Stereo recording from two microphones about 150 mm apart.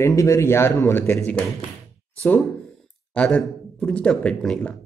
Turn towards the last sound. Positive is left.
turn(degrees=5)  # may be behind; listen again after turning